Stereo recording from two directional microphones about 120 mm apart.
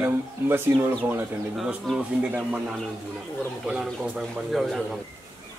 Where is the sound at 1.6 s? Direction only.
5° right (ahead or behind).